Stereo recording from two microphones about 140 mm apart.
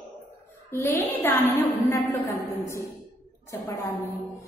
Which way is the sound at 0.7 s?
15° left (ahead or behind).